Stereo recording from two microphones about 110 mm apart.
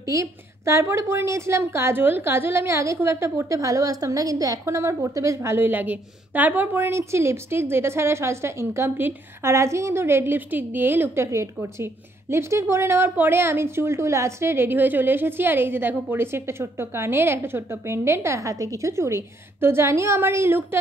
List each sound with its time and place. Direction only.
0.0 s a woman's voice: 30° right (ahead or behind)